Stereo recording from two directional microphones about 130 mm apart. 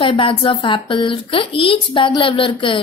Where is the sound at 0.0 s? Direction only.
40° left (ahead or behind).